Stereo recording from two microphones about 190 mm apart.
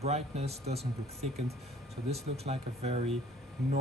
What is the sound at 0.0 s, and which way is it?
Speech, 35° right (ahead or behind).